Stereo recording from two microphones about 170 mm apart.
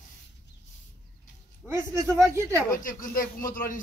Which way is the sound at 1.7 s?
15° right (ahead or behind).